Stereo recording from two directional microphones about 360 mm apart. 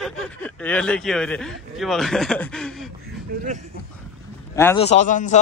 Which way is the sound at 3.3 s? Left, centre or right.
Right.